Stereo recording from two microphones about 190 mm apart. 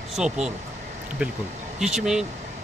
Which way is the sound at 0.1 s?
5° right (ahead or behind).